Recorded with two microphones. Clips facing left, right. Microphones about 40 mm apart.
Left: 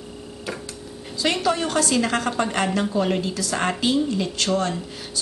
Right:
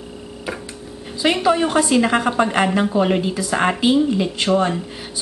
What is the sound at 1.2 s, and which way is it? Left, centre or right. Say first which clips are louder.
A woman's voice: right 5 dB; centre.